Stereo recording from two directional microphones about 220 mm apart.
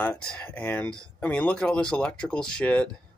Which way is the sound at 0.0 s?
5° left (ahead or behind).